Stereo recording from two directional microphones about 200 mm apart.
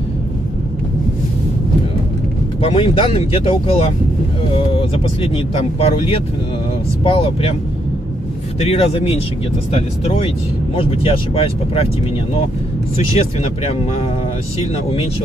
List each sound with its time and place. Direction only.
2.6 s speech: 30° left (ahead or behind)
8.5 s speech: 30° left (ahead or behind)